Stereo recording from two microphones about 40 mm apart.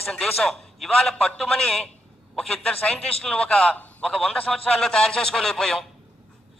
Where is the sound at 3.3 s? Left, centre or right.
Left.